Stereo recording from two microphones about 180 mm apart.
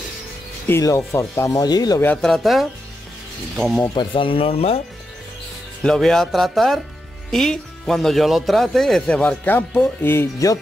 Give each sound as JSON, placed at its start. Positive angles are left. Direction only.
{"t": 0.7, "sound": "speech", "side_deg": 15}
{"t": 2.0, "sound": "speech", "side_deg": 0}
{"t": 3.9, "sound": "speech", "side_deg": 25}
{"t": 5.8, "sound": "speech", "side_deg": 5}